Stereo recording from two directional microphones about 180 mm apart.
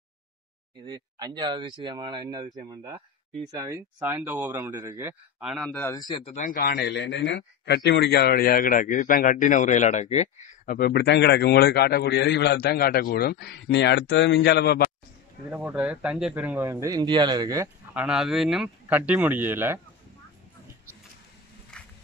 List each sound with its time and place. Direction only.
0.8 s speech: 25° right (ahead or behind)
5.5 s speech: centre (ahead or behind)
5.9 s speech: 20° left (ahead or behind)
6.4 s a man's voice: 50° left (ahead or behind)
10.6 s a man's voice: 55° left (ahead or behind)
15.5 s speech: 10° right (ahead or behind)
17.9 s speech: 5° right (ahead or behind)
21.7 s a sound: 5° left (ahead or behind)